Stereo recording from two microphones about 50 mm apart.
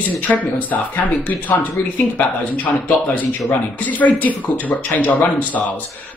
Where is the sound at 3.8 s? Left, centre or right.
Left.